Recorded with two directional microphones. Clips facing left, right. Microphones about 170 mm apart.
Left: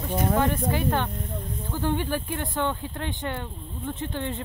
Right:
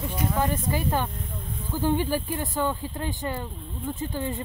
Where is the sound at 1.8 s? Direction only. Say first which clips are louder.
Right 2 dB; 10° right (ahead or behind).